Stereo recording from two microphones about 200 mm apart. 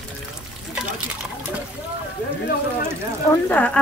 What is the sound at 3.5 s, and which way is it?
Speech, 5° left (ahead or behind).